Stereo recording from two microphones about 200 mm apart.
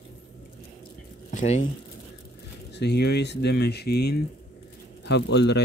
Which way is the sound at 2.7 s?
55° left (ahead or behind).